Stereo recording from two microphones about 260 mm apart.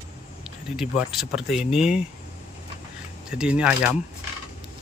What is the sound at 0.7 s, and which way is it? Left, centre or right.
Speech, centre.